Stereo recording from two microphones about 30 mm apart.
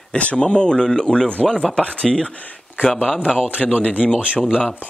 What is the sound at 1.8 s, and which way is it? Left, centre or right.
Speech, left.